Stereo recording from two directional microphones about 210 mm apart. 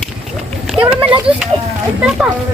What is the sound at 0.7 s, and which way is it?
A child's voice, 5° right (ahead or behind).